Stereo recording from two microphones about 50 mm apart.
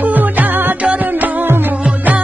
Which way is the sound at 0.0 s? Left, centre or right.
Right.